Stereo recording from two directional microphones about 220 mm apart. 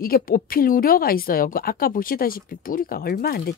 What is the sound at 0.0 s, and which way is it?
A woman's voice, 40° left (ahead or behind).